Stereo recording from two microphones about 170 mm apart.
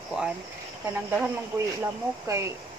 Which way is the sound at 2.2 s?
15° right (ahead or behind).